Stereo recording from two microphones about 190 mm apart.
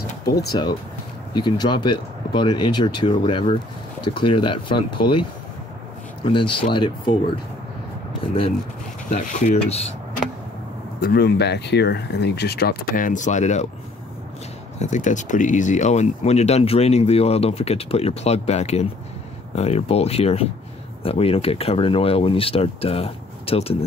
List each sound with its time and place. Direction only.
0.5 s speech: 20° left (ahead or behind)
6.2 s speech: 25° left (ahead or behind)
9.1 s speech: 35° left (ahead or behind)
11.0 s speech: 60° left (ahead or behind); by 13.7 s 40° left (ahead or behind)
14.8 s speech: 40° left (ahead or behind)